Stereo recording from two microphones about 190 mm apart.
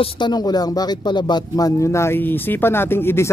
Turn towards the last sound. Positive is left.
turn(degrees=10)  # may be behind; listen again after turning